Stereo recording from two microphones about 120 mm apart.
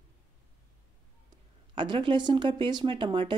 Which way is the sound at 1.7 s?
45° right (ahead or behind).